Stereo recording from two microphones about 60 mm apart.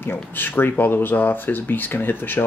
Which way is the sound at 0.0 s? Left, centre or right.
Left.